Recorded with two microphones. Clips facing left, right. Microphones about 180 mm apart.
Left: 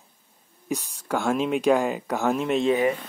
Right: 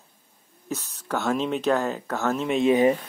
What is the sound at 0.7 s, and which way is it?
Speech, 10° left (ahead or behind).